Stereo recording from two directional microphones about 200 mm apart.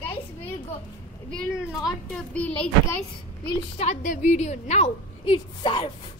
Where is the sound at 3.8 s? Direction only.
35° left (ahead or behind).